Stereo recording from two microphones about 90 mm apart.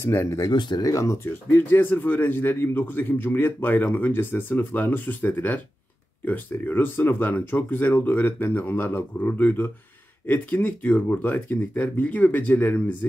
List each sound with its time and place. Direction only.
0.0 s speech: 30° left (ahead or behind)
0.5 s speech: 55° left (ahead or behind); by 12.9 s 15° left (ahead or behind)